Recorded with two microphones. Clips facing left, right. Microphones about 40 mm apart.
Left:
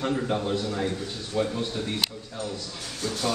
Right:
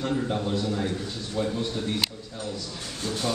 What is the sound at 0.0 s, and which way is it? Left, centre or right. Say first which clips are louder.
A man's voice: left 1 dB; centre.